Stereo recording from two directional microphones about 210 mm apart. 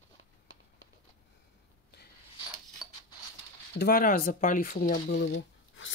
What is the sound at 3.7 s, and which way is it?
Speech, 45° left (ahead or behind).